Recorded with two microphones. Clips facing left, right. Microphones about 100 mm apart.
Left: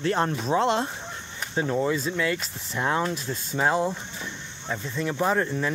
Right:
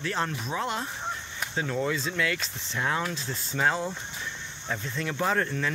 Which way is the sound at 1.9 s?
15° left (ahead or behind).